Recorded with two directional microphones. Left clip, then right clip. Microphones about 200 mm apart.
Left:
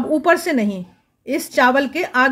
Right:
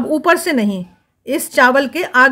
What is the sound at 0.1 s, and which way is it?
A woman's voice, 15° right (ahead or behind).